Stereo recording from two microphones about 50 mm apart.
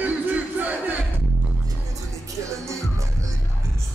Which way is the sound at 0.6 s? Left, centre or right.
Right.